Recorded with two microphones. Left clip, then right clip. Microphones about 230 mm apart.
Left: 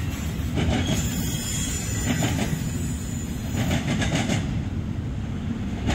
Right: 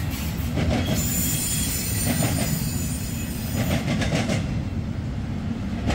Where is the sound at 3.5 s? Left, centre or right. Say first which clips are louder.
Even; centre.